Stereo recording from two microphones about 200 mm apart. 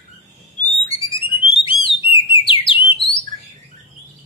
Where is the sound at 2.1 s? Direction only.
25° left (ahead or behind).